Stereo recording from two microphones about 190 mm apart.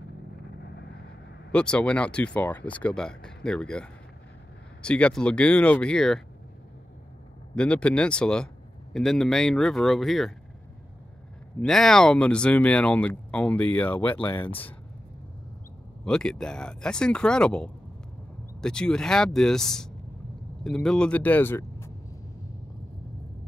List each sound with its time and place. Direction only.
1.5 s speech: 5° left (ahead or behind)
7.5 s speech: 5° left (ahead or behind)
11.6 s speech: centre (ahead or behind)
16.0 s speech: 5° left (ahead or behind)